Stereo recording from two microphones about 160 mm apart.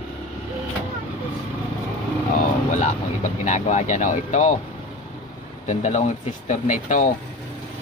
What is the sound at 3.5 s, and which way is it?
Speech, 50° left (ahead or behind).